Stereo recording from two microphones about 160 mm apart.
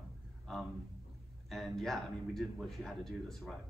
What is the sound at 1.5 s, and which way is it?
Speech, centre (ahead or behind).